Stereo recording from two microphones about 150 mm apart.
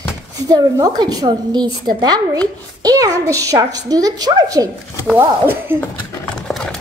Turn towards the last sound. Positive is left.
turn(degrees=0)  # may be behind; listen again after turning